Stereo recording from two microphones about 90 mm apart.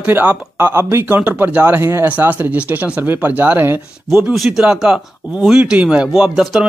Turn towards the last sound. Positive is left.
turn(degrees=-5)  # may be behind; listen again after turning